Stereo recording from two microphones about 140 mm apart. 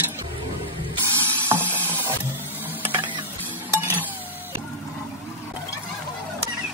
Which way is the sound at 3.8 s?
15° right (ahead or behind).